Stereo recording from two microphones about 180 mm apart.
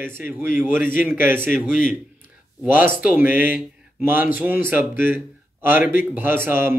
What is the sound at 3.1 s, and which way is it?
A man's voice, 10° right (ahead or behind).